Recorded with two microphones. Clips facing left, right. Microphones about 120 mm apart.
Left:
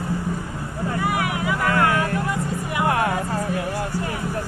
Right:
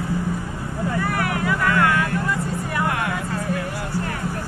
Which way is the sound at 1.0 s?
10° left (ahead or behind).